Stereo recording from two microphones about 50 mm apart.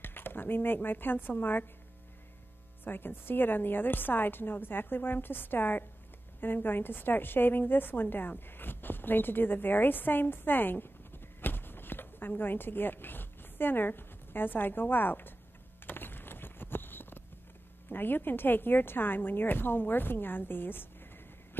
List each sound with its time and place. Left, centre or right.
0.0 s speech: left
2.8 s a woman's voice: left
15.8 s a sound: left
17.8 s speech: left